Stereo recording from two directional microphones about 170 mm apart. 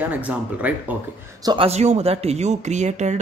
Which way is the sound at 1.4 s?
25° right (ahead or behind).